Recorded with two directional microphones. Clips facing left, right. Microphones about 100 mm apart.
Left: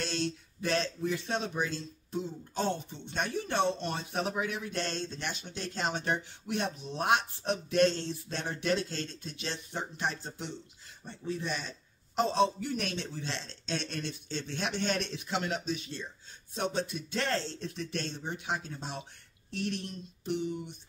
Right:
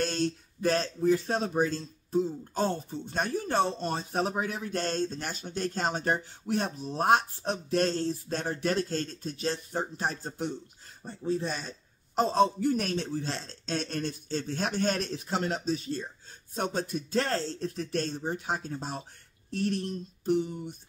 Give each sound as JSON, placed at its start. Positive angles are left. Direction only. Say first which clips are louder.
{"t": 0.0, "sound": "speech", "louder": "right 5 dB", "side_deg": -45}